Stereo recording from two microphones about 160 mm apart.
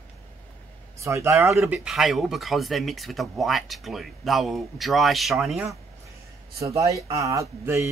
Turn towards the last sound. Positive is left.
turn(degrees=-20)  # may be behind; listen again after turning